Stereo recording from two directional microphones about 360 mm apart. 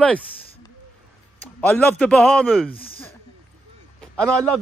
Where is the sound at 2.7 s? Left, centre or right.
Centre.